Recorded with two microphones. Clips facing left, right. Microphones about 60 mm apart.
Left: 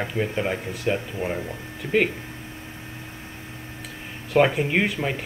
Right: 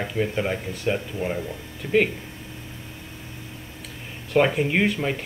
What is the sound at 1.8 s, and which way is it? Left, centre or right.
Speech, centre.